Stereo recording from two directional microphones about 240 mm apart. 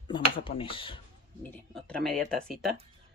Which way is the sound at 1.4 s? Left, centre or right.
Centre.